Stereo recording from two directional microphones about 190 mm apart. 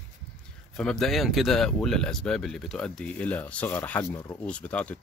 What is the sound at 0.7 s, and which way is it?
Speech, 5° left (ahead or behind).